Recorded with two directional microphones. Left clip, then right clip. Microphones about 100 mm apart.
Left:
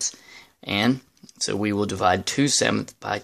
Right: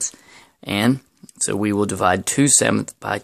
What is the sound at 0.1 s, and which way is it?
Speech, 50° right (ahead or behind).